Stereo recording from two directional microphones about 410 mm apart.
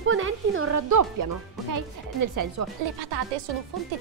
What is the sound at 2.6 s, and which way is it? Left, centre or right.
Speech, right.